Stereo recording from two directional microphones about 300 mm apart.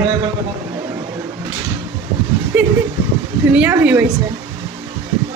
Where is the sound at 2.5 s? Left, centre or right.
Centre.